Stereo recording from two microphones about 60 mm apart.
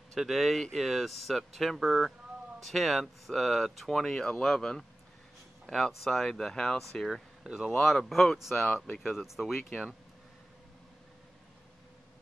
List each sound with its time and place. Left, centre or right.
0.1 s speech: centre
7.4 s speech: centre
7.8 s speech: centre
8.4 s speech: centre